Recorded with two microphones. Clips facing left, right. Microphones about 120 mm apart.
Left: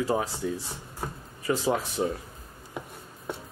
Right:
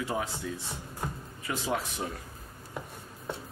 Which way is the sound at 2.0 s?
25° left (ahead or behind).